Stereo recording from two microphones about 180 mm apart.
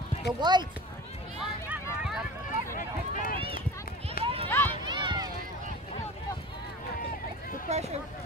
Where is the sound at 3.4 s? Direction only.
30° right (ahead or behind).